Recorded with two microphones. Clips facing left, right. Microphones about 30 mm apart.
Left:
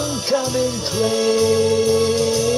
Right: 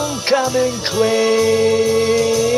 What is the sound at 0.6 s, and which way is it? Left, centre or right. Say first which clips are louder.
Music: right 4 dB; right.